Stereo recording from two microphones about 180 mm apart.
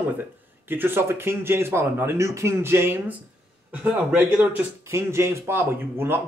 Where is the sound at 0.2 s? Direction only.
10° right (ahead or behind).